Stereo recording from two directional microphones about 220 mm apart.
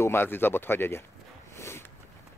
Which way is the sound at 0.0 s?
10° left (ahead or behind).